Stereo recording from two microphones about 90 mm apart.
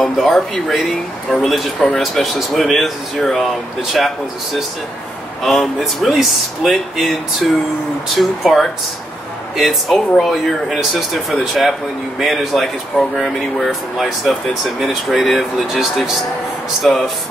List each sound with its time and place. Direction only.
0.0 s speech: centre (ahead or behind)
5.4 s speech: centre (ahead or behind)